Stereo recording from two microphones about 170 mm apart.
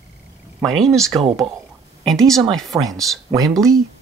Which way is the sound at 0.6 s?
Centre (ahead or behind).